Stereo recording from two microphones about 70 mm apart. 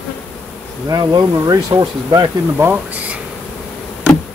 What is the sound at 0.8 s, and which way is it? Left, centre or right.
Speech, right.